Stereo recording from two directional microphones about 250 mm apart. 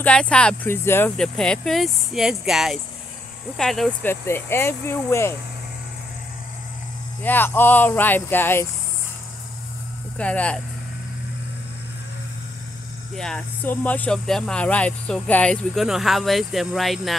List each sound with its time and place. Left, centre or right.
0.0 s speech: centre
7.2 s speech: centre
10.1 s speech: centre
13.1 s speech: centre